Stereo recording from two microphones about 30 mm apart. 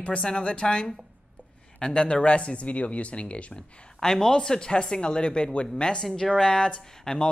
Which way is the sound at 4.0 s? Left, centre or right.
Left.